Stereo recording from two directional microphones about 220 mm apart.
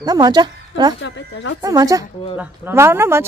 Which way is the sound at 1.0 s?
55° left (ahead or behind).